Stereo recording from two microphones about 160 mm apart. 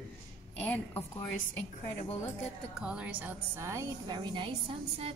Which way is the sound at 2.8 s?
5° right (ahead or behind).